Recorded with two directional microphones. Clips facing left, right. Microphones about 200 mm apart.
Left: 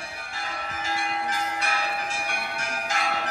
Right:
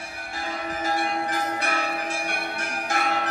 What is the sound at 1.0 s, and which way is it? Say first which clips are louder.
Bell: right 3 dB; 45° right (ahead or behind).